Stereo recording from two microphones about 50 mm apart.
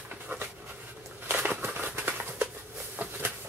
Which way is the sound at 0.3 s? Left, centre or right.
Right.